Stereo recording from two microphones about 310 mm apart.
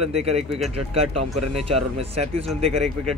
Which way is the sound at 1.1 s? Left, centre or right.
Right.